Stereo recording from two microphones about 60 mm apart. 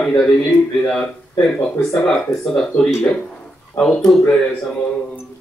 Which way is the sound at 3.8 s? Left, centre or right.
Centre.